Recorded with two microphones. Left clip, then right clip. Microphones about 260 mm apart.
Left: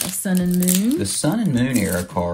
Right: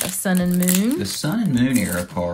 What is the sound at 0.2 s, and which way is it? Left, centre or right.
Speech, right.